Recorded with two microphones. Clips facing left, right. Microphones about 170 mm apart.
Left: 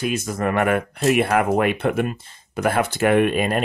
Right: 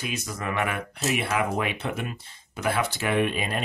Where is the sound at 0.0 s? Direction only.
50° left (ahead or behind).